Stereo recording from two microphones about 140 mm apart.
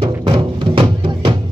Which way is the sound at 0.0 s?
35° right (ahead or behind).